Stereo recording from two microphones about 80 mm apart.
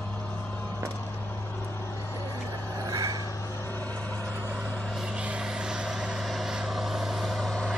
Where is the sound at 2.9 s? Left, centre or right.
Right.